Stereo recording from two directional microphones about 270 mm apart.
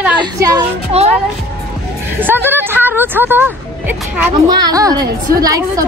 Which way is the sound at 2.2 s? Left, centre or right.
Centre.